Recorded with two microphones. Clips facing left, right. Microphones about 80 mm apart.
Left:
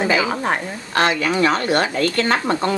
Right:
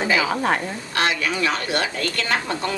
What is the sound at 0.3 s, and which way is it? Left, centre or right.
Stir, centre.